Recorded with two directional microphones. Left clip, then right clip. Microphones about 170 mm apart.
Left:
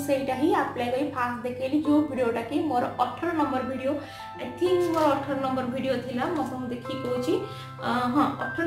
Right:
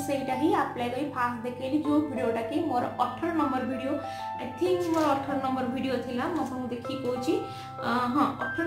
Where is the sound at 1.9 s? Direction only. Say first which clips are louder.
Left 3 dB; 5° left (ahead or behind).